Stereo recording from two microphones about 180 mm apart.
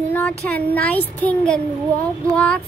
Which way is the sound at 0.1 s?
5° left (ahead or behind).